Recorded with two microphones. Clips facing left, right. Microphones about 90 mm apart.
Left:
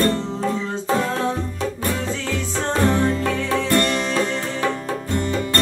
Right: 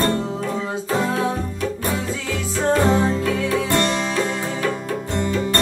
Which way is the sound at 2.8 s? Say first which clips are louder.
Right 1 dB; 15° right (ahead or behind).